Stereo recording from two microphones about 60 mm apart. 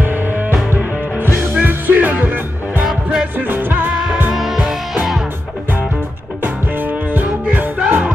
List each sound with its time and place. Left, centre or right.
0.0 s music: right
2.8 s music: centre
3.3 s music: right
3.9 s music: centre
6.4 s music: right
7.8 s music: centre